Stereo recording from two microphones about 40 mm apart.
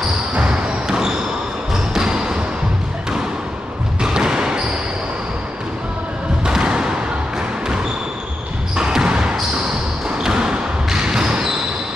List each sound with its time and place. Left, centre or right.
0.4 s basketball bounce: centre
4.0 s basketball bounce: centre
6.4 s music: right
8.7 s basketball bounce: centre